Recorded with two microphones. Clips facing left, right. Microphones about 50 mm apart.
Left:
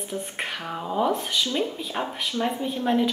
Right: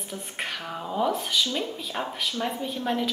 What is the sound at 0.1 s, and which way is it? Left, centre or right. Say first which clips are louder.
A woman's voice: left 2 dB; centre.